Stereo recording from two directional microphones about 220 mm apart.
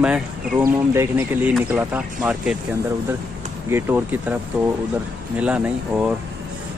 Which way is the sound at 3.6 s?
10° right (ahead or behind).